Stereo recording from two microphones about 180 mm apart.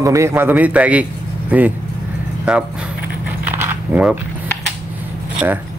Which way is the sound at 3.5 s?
10° right (ahead or behind).